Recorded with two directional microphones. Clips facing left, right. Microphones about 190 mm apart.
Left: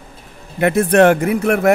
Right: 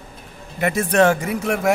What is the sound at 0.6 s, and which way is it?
Speech, 60° left (ahead or behind).